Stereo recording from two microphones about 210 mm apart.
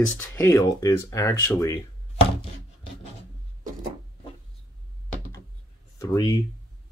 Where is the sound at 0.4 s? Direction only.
15° left (ahead or behind).